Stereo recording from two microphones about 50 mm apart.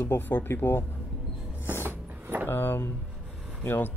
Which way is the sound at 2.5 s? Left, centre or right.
Left.